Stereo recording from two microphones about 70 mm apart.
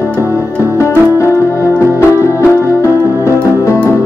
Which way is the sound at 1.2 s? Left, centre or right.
Left.